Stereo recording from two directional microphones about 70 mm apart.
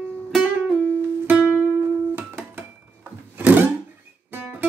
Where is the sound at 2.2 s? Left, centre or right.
Right.